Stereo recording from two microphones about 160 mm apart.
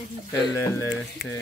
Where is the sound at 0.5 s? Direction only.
15° left (ahead or behind).